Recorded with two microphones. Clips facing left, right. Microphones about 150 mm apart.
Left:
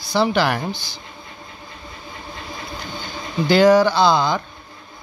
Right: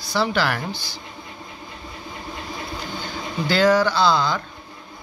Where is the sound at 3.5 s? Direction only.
15° left (ahead or behind).